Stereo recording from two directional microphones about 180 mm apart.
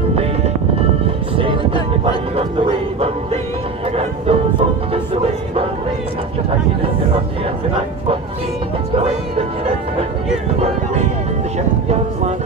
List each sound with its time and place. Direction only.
0.7 s music: 30° right (ahead or behind)
3.9 s music: 35° right (ahead or behind)
8.9 s music: 35° right (ahead or behind)